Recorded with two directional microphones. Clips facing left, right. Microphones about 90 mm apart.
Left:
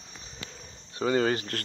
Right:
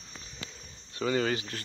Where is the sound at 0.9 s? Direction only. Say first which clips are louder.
Left 3 dB; 40° left (ahead or behind).